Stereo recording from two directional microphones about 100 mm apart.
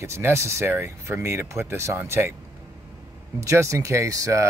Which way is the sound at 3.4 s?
30° right (ahead or behind).